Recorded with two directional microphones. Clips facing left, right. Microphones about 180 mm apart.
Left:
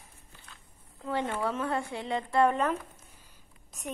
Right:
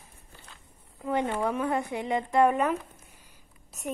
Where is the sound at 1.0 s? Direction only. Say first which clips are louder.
Right 3 dB; 15° right (ahead or behind).